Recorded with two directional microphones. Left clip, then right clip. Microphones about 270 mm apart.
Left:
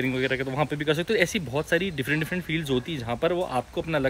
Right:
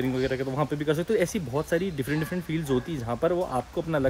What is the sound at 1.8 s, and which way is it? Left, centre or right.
Speech, right.